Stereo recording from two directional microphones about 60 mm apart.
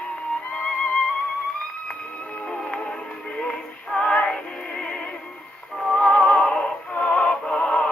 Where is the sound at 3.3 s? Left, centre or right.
Centre.